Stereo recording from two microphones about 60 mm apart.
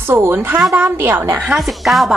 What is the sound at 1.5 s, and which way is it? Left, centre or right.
Speech, centre.